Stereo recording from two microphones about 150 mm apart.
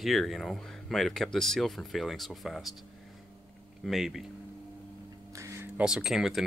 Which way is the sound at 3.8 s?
Centre (ahead or behind).